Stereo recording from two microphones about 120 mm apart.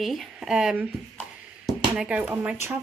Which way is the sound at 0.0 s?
Centre (ahead or behind).